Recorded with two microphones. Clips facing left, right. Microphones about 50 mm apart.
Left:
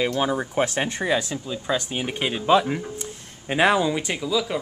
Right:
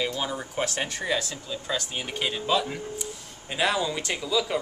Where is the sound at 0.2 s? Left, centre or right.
Left.